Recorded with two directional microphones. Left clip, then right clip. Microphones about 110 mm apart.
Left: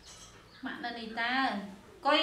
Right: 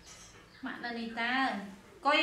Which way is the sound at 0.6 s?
10° left (ahead or behind).